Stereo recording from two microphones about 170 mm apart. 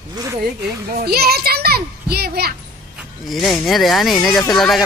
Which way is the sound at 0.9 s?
65° right (ahead or behind).